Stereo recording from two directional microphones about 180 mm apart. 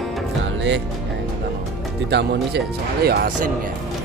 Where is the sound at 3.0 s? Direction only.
65° right (ahead or behind).